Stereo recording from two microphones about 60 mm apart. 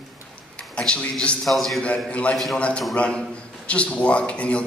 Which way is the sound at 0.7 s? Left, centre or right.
Centre.